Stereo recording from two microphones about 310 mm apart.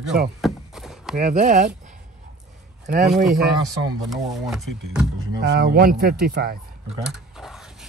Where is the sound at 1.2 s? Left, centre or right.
Right.